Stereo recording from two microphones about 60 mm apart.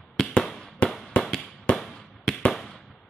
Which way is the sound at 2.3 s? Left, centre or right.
Centre.